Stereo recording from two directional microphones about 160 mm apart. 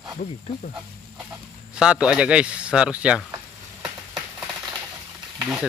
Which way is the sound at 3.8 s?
5° right (ahead or behind).